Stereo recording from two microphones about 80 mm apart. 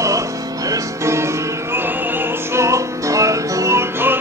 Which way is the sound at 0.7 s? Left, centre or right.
Right.